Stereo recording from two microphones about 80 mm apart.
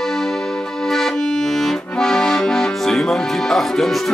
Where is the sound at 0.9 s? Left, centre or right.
Centre.